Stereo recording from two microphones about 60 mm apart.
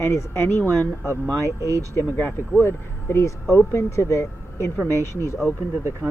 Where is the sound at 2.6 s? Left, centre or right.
Left.